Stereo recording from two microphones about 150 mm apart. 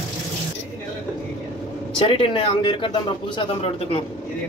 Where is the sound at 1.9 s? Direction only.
35° left (ahead or behind).